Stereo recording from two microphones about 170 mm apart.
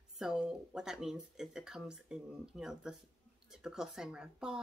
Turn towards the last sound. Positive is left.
turn(degrees=-5)  # may be behind; listen again after turning